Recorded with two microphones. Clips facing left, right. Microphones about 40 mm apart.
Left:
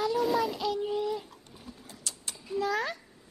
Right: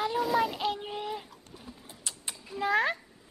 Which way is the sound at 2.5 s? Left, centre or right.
Right.